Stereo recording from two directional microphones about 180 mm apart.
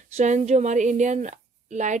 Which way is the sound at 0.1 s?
40° right (ahead or behind).